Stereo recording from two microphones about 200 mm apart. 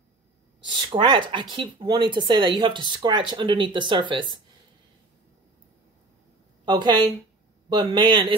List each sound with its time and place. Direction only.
0.7 s speech: 25° right (ahead or behind)
6.6 s speech: 20° right (ahead or behind)